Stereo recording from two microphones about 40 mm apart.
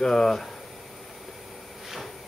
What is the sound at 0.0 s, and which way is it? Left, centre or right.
Speech, centre.